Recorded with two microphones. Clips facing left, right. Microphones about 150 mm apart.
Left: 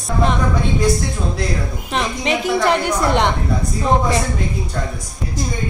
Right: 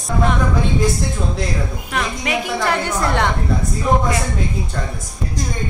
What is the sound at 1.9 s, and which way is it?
A woman's voice, 25° left (ahead or behind).